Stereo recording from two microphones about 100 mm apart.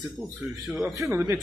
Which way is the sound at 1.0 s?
25° right (ahead or behind).